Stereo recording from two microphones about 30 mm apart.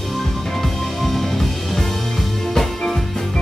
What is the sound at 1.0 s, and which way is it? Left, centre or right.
Music, centre.